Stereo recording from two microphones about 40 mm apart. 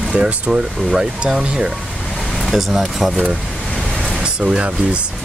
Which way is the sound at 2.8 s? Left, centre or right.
Centre.